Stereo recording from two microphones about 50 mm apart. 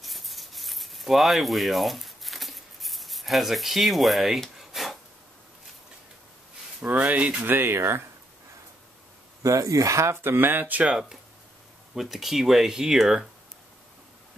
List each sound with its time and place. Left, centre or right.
0.0 s a sound: centre
6.8 s speech: right
7.4 s speech: right
9.4 s speech: right
10.2 s speech: right
10.9 s speech: centre